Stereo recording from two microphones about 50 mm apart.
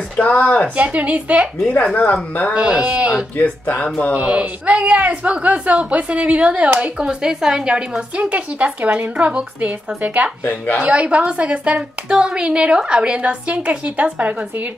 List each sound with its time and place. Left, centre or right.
0.1 s speech: left
0.7 s speech: right
2.5 s speech: right
3.3 s speech: left
4.1 s speech: right
8.2 s speech: right